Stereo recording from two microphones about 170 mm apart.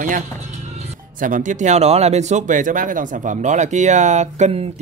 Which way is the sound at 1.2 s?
50° right (ahead or behind).